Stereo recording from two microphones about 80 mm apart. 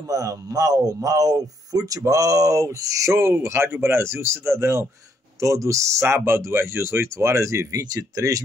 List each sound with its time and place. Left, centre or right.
0.1 s a man's voice: right